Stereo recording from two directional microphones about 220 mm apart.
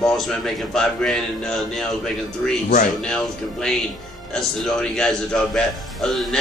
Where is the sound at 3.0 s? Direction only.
5° left (ahead or behind).